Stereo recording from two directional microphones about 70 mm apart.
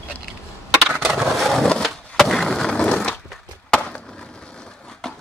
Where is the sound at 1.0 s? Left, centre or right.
Centre.